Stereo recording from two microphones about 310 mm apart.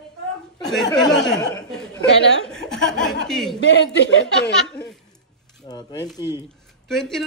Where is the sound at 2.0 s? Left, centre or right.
Left.